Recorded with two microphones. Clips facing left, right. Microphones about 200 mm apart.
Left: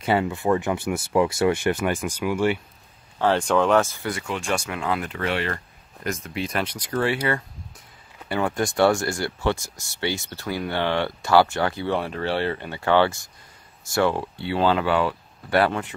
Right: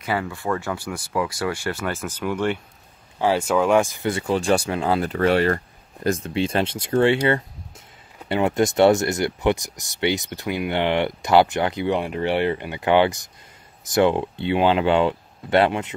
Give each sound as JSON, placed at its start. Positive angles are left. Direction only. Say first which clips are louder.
{"t": 0.0, "sound": "speech", "louder": "left 4 dB", "side_deg": 25}
{"t": 3.2, "sound": "speech", "louder": "even", "side_deg": -10}
{"t": 6.0, "sound": "speech", "louder": "right 6 dB", "side_deg": -30}